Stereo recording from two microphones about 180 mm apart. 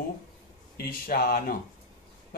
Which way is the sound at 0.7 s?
60° left (ahead or behind).